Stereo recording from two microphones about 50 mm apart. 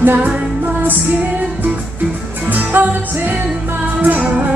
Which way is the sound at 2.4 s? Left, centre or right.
Right.